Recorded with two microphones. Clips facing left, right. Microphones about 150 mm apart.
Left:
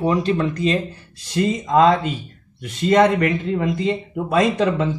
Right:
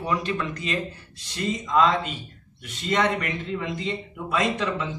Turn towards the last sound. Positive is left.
turn(degrees=45)  # may be behind; listen again after turning